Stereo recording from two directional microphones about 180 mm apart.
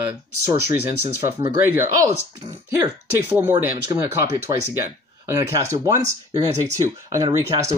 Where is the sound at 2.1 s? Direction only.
35° right (ahead or behind).